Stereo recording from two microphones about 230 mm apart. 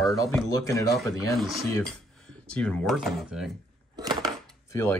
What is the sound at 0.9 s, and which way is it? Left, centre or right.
Speech, centre.